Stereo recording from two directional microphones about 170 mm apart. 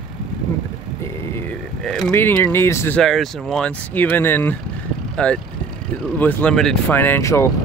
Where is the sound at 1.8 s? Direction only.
Centre (ahead or behind).